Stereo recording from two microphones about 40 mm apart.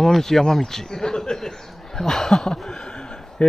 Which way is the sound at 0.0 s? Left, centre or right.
Centre.